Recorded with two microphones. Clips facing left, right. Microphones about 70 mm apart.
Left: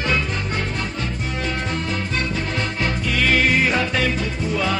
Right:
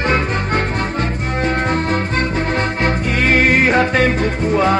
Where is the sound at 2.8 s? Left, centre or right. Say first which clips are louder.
Right 2 dB; right.